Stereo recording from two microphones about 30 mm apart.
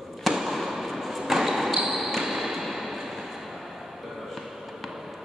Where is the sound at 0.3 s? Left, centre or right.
Centre.